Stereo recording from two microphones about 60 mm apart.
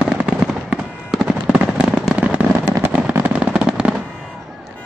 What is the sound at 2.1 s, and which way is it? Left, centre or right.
Fireworks, right.